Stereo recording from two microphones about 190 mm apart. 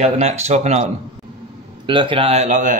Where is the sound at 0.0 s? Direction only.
35° right (ahead or behind).